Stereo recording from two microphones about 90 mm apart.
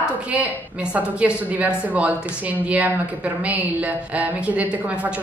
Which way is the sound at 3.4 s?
15° right (ahead or behind).